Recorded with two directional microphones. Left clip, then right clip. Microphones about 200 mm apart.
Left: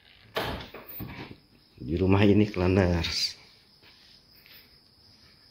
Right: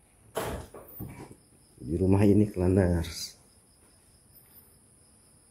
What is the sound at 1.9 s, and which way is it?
Speech, 5° right (ahead or behind).